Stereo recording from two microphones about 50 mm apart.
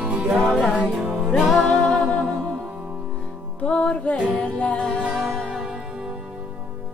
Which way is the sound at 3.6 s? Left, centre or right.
Left.